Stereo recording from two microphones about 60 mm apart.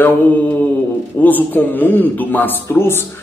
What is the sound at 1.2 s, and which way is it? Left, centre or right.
A man's voice, left.